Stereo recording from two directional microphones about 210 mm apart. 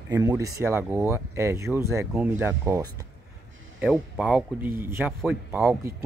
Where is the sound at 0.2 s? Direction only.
15° right (ahead or behind).